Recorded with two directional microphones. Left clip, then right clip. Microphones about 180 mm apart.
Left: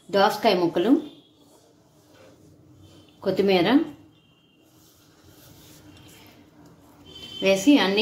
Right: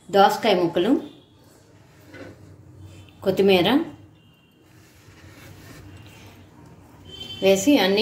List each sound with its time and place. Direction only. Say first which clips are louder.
0.1 s speech: right 3 dB; 15° left (ahead or behind)
3.2 s speech: right 3 dB; 15° left (ahead or behind)
7.3 s a woman's voice: right 1 dB; 25° left (ahead or behind)